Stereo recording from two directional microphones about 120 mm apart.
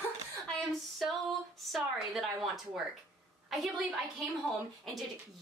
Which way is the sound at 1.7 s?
Centre (ahead or behind).